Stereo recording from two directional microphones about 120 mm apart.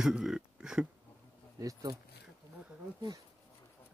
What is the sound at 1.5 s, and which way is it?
Speech, 25° right (ahead or behind).